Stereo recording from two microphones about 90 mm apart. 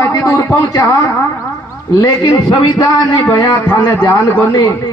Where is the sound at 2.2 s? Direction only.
50° left (ahead or behind).